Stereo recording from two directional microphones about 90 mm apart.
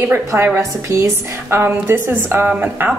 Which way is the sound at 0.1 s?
25° right (ahead or behind).